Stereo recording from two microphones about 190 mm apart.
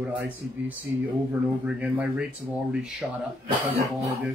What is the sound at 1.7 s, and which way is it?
Speech, 5° right (ahead or behind).